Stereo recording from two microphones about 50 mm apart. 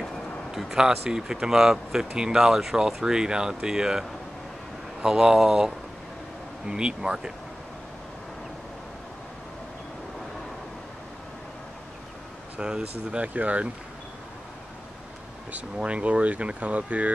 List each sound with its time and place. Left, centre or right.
0.5 s speech: centre
5.0 s speech: centre
12.5 s speech: centre
13.3 s speech: right
15.8 s speech: right